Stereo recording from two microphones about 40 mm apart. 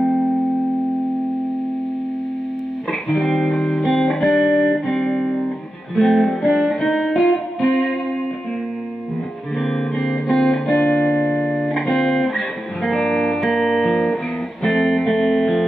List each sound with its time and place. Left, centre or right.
3.1 s music: centre
4.9 s music: centre
9.6 s music: centre